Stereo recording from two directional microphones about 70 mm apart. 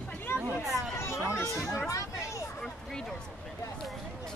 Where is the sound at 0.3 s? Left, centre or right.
Left.